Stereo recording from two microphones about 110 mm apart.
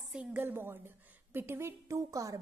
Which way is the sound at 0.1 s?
10° right (ahead or behind).